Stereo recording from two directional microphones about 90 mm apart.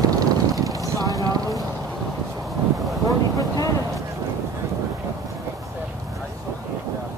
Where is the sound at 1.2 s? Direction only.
45° right (ahead or behind).